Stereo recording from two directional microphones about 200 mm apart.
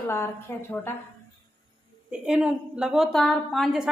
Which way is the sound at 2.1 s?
5° right (ahead or behind).